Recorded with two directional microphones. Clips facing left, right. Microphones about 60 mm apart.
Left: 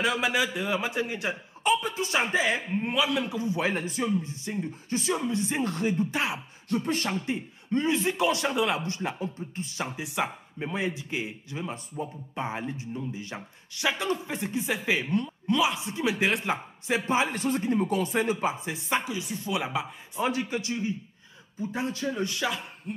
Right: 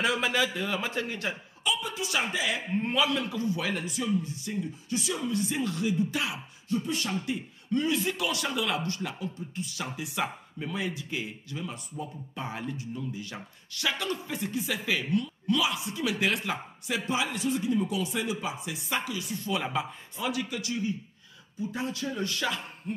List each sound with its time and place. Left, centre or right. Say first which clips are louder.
0.0 s speech: left 1 dB; centre
0.3 s a man's voice: left 1 dB; centre
1.6 s speech: left 6 dB; left
2.8 s a man's voice: right 2 dB; centre
3.3 s speech: left 2 dB; left
6.7 s speech: left 2 dB; left
7.2 s speech: left 1 dB; left
19.5 s speech: even; centre
20.2 s speech: left 4 dB; left
22.9 s speech: right 1 dB; centre